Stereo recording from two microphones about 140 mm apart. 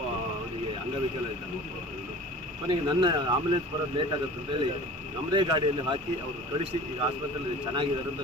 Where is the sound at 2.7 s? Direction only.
35° right (ahead or behind).